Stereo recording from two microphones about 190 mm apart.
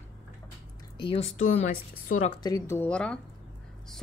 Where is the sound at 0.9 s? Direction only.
30° left (ahead or behind).